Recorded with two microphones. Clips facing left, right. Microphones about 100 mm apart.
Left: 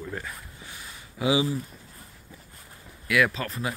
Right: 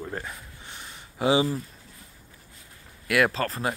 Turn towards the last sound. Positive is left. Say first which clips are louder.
# right 2 dB
turn(degrees=-35)  # may be behind; listen again after turning